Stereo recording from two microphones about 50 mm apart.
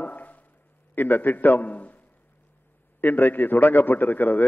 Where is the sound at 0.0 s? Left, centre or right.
Left.